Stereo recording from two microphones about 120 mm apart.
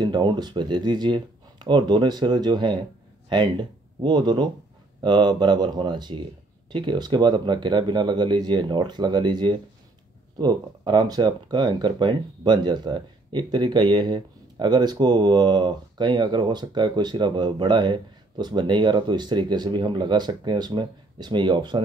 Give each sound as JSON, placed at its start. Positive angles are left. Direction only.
{"t": 0.0, "sound": "speech", "side_deg": -40}